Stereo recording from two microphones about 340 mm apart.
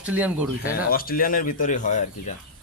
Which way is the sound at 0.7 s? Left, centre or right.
Left.